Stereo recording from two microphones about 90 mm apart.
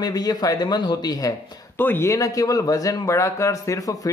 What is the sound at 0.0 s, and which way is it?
Speech, 45° left (ahead or behind).